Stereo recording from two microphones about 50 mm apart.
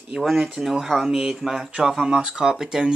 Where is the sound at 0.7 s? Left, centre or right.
Centre.